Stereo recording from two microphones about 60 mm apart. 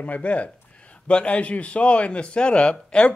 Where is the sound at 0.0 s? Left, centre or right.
Left.